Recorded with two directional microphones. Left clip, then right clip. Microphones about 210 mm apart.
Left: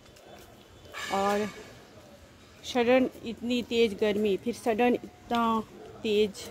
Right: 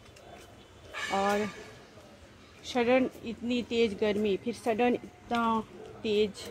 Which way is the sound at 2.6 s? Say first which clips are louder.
Left 2 dB; 10° left (ahead or behind).